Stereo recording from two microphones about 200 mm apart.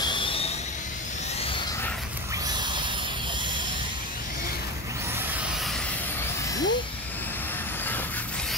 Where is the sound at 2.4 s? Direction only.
20° right (ahead or behind).